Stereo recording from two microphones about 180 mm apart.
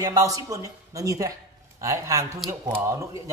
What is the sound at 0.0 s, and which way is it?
A man's voice, 20° right (ahead or behind).